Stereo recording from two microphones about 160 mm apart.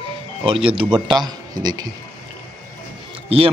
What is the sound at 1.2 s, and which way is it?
Speech, 25° right (ahead or behind).